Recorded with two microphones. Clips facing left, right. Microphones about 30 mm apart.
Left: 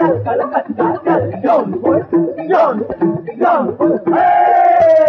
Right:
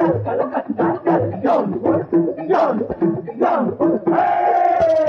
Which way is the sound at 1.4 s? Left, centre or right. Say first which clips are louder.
Left 5 dB; left.